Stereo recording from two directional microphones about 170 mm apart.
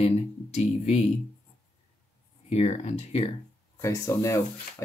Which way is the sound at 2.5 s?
40° left (ahead or behind).